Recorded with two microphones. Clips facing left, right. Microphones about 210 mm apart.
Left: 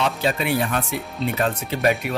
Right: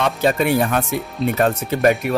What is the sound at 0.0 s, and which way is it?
Speech, 45° right (ahead or behind).